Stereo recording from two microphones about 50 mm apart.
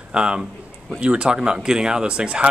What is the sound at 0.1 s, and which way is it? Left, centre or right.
A man's voice, centre.